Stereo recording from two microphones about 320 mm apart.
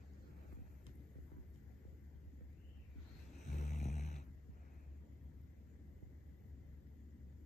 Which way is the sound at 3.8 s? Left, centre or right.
Left.